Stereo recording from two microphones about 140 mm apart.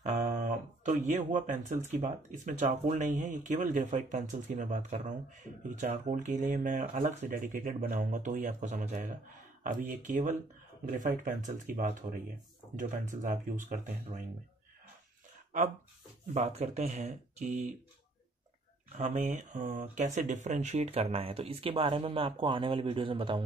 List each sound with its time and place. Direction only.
0.0 s a sound: 60° right (ahead or behind)
1.9 s speech: 55° right (ahead or behind)
13.2 s speech: 60° right (ahead or behind)
16.3 s speech: 50° right (ahead or behind)
18.9 s speech: 60° right (ahead or behind); by 23.4 s 40° right (ahead or behind)